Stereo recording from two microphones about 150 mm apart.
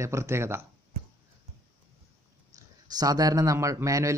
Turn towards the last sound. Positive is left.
turn(degrees=-20)  # may be behind; listen again after turning